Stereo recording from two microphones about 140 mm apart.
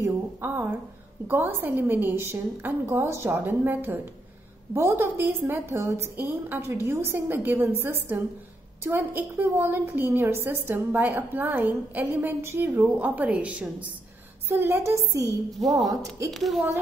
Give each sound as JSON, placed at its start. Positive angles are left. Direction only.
{"t": 0.0, "sound": "a woman's voice", "side_deg": -15}
{"t": 15.6, "sound": "speech", "side_deg": 0}